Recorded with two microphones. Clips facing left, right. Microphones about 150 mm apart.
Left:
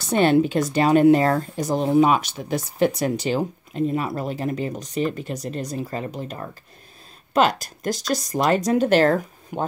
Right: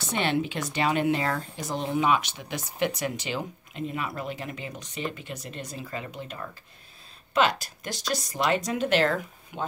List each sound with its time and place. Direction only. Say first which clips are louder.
0.0 s speech: left 9 dB; 40° left (ahead or behind)